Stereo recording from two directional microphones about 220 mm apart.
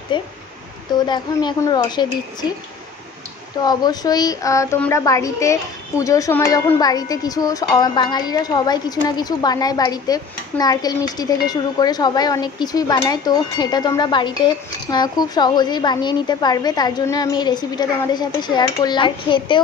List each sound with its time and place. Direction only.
0.1 s speech: 20° left (ahead or behind)
3.6 s a woman's voice: 20° left (ahead or behind)